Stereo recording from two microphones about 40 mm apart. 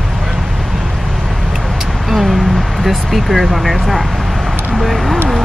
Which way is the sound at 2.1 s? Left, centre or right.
Centre.